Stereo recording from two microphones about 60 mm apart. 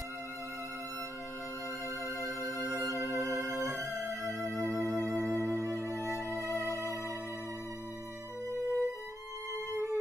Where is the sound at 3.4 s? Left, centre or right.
Right.